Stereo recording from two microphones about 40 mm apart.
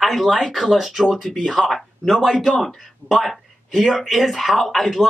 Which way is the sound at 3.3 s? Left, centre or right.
Centre.